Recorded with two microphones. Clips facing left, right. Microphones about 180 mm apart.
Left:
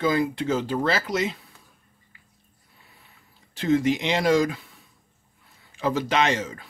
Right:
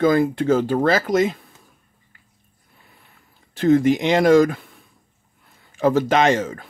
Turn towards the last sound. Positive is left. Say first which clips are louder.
# right 6 dB
turn(degrees=-50)  # may be behind; listen again after turning